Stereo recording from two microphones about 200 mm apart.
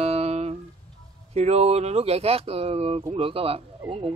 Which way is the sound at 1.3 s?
35° right (ahead or behind).